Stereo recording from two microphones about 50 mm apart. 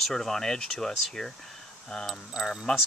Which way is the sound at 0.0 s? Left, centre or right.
Centre.